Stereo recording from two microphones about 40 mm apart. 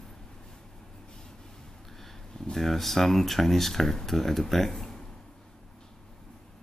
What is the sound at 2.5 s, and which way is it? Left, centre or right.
Speech, centre.